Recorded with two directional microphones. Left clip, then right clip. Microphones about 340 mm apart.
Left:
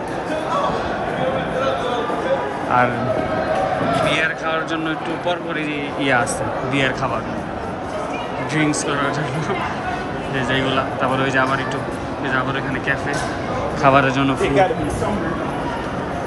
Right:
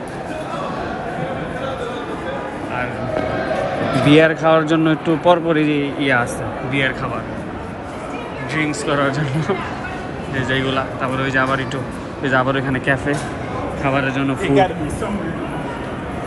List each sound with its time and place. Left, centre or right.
4.1 s a man's voice: centre
8.5 s a man's voice: centre
10.5 s a man's voice: centre
14.4 s speech: right